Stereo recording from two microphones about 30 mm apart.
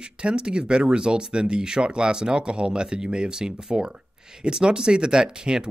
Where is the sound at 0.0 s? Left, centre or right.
Right.